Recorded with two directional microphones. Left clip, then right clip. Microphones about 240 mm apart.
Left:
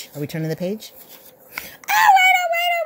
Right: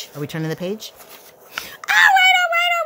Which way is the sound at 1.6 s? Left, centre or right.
Centre.